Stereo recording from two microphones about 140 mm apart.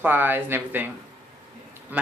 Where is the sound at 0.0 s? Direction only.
15° right (ahead or behind).